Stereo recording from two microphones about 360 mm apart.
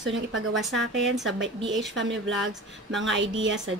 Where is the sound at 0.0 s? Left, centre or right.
Right.